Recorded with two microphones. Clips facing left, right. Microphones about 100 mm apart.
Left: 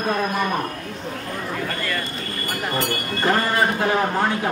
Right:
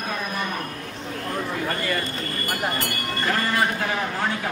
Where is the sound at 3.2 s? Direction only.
35° left (ahead or behind).